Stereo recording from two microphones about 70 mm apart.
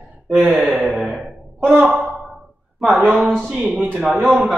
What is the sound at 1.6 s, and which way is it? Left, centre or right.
Speech, centre.